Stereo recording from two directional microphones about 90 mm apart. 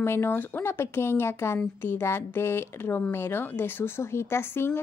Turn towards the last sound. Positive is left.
turn(degrees=25)  # may be behind; listen again after turning